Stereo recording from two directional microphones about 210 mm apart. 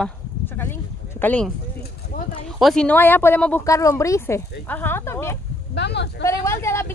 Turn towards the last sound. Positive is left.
turn(degrees=10)  # may be behind; listen again after turning